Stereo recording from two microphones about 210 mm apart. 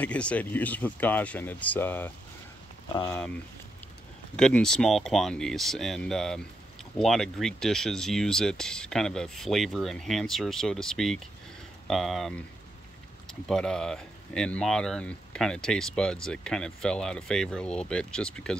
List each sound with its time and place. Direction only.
0.0 s speech: 5° left (ahead or behind)
4.4 s speech: 5° left (ahead or behind)